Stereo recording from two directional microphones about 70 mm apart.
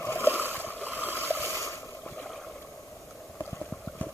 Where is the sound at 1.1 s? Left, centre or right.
Left.